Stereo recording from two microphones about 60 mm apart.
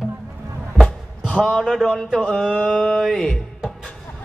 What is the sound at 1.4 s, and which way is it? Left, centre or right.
A man's voice, centre.